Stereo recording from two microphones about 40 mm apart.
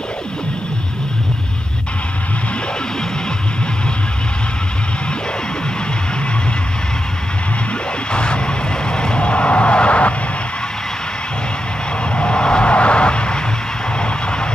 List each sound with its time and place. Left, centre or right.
8.1 s vehicle: left
12.2 s vehicle: left